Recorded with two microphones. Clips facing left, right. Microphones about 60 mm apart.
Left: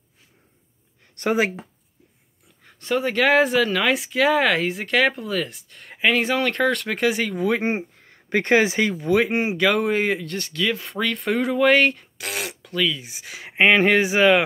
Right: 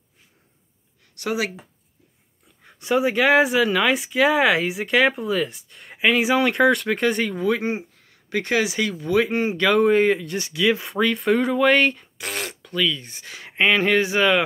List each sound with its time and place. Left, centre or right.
1.1 s speech: left
2.6 s speech: centre
7.6 s speech: left; by 9.6 s centre
9.6 s speech: centre
10.3 s speech: centre
11.0 s speech: centre